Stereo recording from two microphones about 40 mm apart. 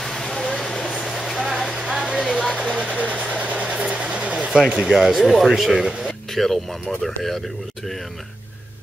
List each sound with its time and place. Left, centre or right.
0.0 s vehicle: centre
2.5 s vehicle: centre
3.0 s vehicle: right
4.8 s speech: centre
5.1 s speech: centre
5.9 s a sound: centre
6.3 s speech: centre